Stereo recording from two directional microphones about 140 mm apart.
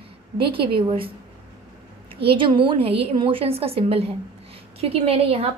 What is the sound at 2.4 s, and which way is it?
A woman's voice, 35° right (ahead or behind).